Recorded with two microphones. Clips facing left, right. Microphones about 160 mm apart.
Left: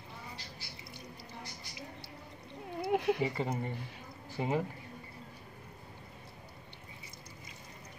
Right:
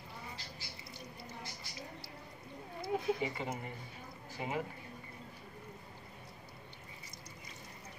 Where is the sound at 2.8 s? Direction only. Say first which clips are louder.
Left 4 dB; 75° left (ahead or behind).